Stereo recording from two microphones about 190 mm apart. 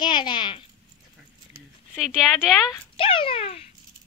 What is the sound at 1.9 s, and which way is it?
Speech, 5° right (ahead or behind).